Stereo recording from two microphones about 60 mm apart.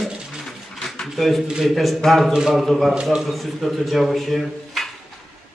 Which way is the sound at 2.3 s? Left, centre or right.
Centre.